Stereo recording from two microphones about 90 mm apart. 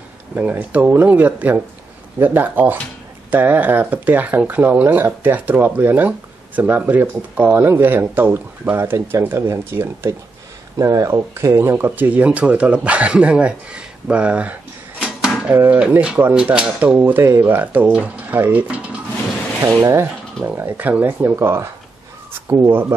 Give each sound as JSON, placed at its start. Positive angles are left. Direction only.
{"t": 0.4, "sound": "speech", "side_deg": -20}
{"t": 10.8, "sound": "speech", "side_deg": -40}
{"t": 15.5, "sound": "speech", "side_deg": -20}
{"t": 15.8, "sound": "speech", "side_deg": -10}
{"t": 17.0, "sound": "speech", "side_deg": -25}
{"t": 19.8, "sound": "speech", "side_deg": -35}